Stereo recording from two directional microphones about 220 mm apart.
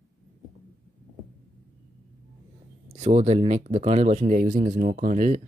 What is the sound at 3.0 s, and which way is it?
Speech, 30° right (ahead or behind).